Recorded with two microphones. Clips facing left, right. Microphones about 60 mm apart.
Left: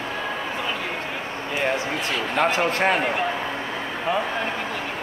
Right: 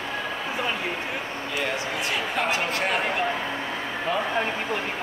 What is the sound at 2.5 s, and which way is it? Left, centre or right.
Speech, left.